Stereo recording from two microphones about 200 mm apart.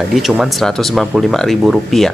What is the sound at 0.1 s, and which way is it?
Speech, centre (ahead or behind).